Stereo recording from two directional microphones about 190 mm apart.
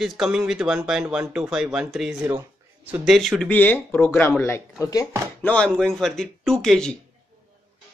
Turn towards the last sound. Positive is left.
turn(degrees=5)  # may be behind; listen again after turning